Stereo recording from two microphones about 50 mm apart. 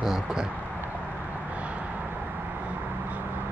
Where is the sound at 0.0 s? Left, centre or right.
Centre.